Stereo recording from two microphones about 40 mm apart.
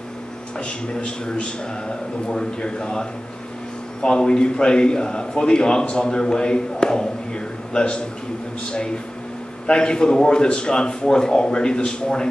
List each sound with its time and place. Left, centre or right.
0.6 s a man's voice: left